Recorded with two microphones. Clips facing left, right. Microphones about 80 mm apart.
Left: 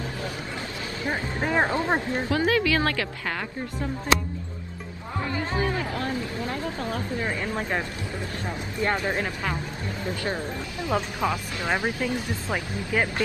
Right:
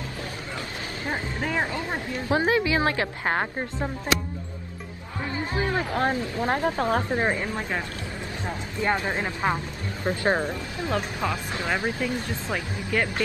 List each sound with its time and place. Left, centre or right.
1.4 s speech: left
2.2 s speech: right
3.3 s speech: right
5.8 s speech: right
7.2 s speech: right
8.5 s speech: right
10.0 s speech: right
10.9 s speech: centre